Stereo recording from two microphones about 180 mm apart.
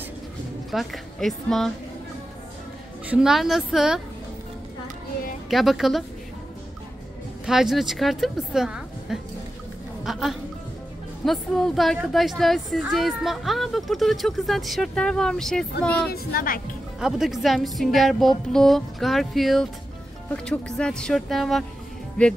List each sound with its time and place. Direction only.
0.7 s a woman's voice: centre (ahead or behind)
3.1 s a woman's voice: 5° right (ahead or behind)
5.5 s a woman's voice: centre (ahead or behind)
7.4 s a woman's voice: centre (ahead or behind)
16.1 s a woman's voice: 55° left (ahead or behind)
17.0 s a woman's voice: centre (ahead or behind)